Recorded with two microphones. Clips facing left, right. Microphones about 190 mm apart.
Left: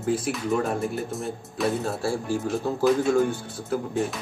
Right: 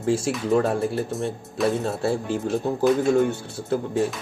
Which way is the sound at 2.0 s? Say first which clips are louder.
Right 2 dB; 20° right (ahead or behind).